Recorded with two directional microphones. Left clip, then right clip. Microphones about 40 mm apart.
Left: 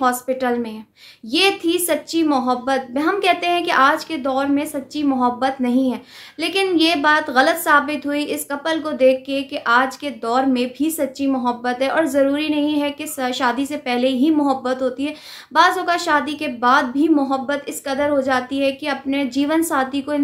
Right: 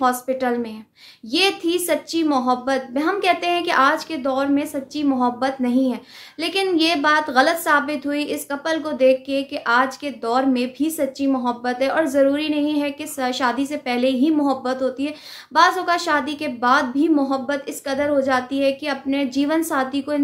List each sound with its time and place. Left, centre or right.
0.0 s a woman's voice: left